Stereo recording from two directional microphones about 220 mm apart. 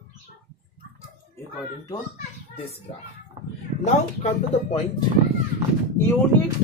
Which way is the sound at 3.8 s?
30° left (ahead or behind).